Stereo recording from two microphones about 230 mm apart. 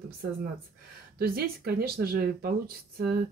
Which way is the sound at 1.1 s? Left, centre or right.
Right.